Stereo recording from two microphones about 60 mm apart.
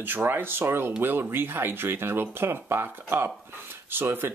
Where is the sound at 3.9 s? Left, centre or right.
Right.